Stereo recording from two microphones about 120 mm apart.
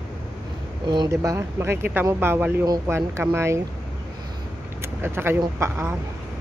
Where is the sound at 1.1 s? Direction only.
25° right (ahead or behind).